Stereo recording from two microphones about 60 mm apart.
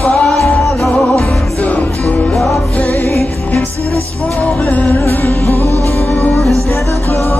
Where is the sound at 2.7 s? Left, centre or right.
Left.